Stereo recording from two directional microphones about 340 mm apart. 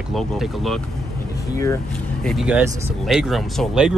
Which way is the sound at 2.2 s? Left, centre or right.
Centre.